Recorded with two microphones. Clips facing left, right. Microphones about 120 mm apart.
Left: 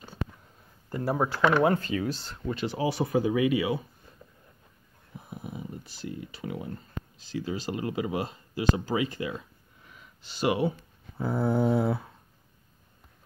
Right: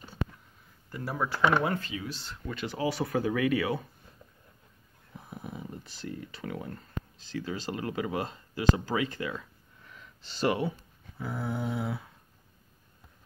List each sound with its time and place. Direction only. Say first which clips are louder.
0.8 s speech: left 5 dB; 35° left (ahead or behind)
2.4 s speech: left 3 dB; 25° left (ahead or behind)
5.3 s a sound: left 2 dB; 10° left (ahead or behind)
6.0 s speech: left 2 dB; 15° left (ahead or behind)
10.2 s speech: left 2 dB; 10° left (ahead or behind)
11.1 s dog: left 8 dB; 35° left (ahead or behind)